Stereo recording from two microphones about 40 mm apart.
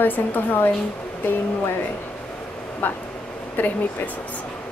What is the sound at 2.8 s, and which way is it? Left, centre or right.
A woman's voice, left.